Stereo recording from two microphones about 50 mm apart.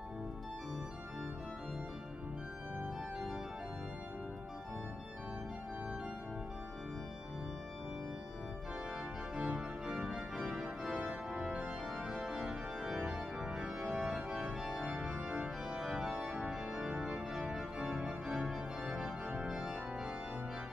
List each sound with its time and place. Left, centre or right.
9.3 s organ: centre
13.7 s organ: right
14.3 s organ: centre
16.9 s organ: right
17.3 s organ: centre